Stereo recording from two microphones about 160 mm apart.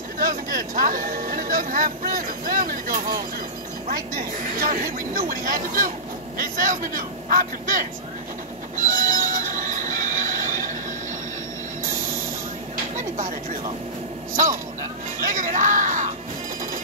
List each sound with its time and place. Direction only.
0.2 s speech: 65° right (ahead or behind)
8.7 s train: 55° right (ahead or behind)
15.2 s speech: 50° right (ahead or behind)